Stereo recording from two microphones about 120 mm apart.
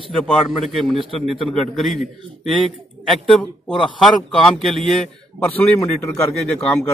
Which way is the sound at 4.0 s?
Centre (ahead or behind).